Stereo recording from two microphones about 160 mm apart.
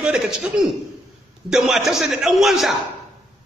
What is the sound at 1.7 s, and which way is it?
A man's voice, centre (ahead or behind).